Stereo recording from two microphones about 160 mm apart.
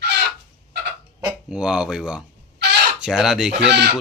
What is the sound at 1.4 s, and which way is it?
Speech, 5° right (ahead or behind).